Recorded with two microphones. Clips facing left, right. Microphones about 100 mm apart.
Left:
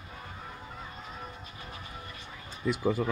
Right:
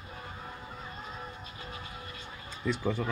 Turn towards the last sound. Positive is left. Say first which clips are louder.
# left 3 dB
turn(degrees=10)  # may be behind; listen again after turning